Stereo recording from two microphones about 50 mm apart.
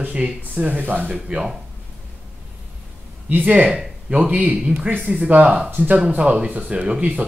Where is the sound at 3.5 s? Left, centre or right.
Right.